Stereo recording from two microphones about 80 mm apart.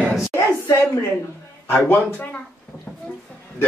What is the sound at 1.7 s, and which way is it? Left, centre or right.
Speech, left.